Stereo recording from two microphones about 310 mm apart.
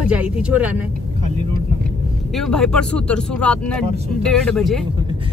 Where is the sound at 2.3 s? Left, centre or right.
Centre.